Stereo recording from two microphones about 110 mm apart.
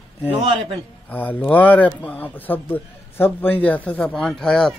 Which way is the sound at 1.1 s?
15° left (ahead or behind).